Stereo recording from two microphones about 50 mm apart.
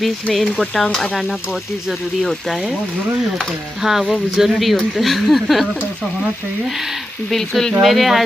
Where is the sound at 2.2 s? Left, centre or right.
Centre.